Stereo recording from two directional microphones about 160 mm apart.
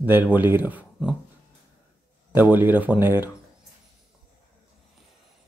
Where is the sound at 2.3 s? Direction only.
10° right (ahead or behind).